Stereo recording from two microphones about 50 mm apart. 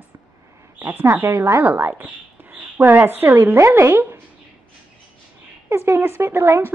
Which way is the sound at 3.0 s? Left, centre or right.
Right.